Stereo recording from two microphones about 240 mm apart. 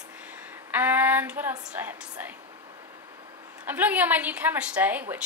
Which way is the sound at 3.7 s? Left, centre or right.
Centre.